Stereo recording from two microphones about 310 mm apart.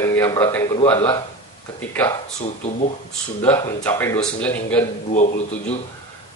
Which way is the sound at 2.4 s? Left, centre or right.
Left.